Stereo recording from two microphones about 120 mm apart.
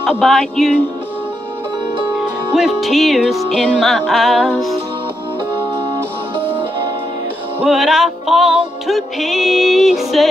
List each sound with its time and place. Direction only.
0.2 s music: centre (ahead or behind)
2.1 s music: 5° right (ahead or behind)
5.6 s music: 50° right (ahead or behind)
7.6 s music: 5° right (ahead or behind)